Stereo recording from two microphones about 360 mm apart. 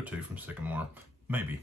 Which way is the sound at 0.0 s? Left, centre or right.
Centre.